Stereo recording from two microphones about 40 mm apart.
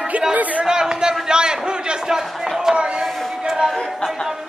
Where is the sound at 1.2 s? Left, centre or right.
Centre.